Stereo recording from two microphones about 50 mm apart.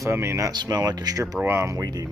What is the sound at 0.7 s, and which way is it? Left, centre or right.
Speech, right.